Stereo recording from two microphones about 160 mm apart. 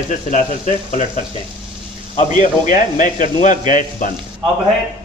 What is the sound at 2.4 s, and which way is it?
A man's voice, 55° left (ahead or behind).